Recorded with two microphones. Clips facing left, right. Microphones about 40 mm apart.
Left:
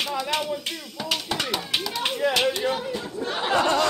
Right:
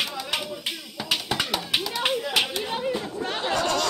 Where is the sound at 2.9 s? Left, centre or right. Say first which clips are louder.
Right 1 dB; right.